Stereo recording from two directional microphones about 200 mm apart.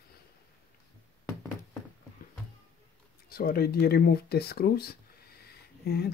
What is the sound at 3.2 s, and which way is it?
Speech, 50° left (ahead or behind).